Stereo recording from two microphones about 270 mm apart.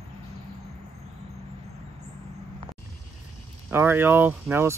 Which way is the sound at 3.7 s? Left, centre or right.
Centre.